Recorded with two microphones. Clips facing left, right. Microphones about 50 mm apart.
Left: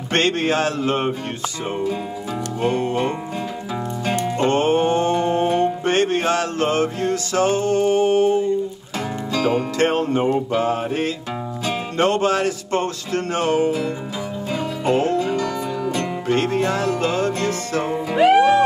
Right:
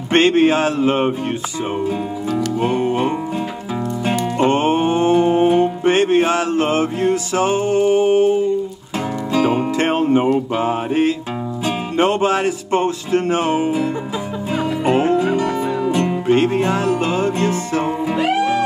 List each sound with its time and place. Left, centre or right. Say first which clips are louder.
0.1 s speech: right 6 dB; centre
2.6 s speech: even; centre
4.0 s music: right 3 dB; centre
14.9 s music: right 3 dB; right
18.1 s music: left 7 dB; left